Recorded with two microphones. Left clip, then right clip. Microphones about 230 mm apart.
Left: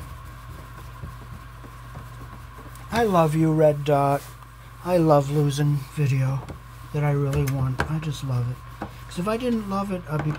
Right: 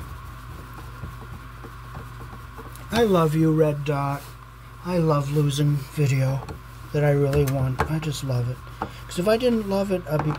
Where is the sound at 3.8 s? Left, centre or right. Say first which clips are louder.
Left 6 dB; left.